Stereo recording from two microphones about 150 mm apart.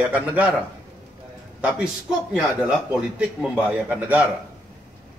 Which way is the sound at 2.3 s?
5° right (ahead or behind).